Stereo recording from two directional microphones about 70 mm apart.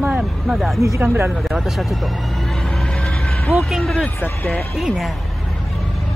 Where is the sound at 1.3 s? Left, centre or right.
Centre.